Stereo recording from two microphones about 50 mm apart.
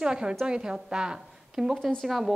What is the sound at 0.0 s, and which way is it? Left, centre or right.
A woman's voice, centre.